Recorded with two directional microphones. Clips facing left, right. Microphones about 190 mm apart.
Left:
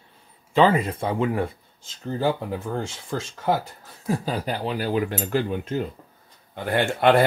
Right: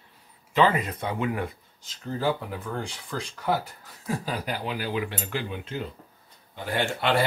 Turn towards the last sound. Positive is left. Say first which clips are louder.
# left 6 dB
turn(degrees=55)  # may be behind; listen again after turning